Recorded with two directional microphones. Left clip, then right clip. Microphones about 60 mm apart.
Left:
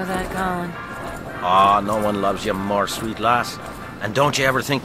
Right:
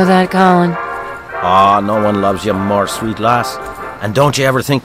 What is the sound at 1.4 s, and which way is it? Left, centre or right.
Speech, right.